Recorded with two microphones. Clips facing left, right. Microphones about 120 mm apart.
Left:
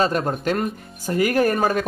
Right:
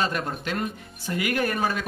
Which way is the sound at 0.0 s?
40° left (ahead or behind).